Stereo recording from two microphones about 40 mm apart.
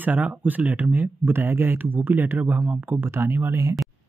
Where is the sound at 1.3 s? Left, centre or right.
Right.